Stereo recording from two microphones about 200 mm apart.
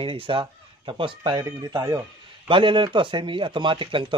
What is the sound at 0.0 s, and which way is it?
A man's voice, 25° right (ahead or behind).